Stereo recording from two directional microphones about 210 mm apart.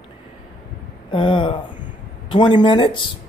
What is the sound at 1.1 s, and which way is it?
A man's voice, 25° left (ahead or behind).